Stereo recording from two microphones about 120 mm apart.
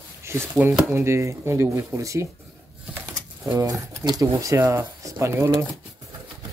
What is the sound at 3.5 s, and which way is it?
Speech, 35° right (ahead or behind).